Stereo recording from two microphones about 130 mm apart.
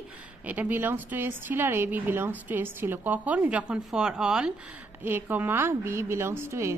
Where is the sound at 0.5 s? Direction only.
15° right (ahead or behind).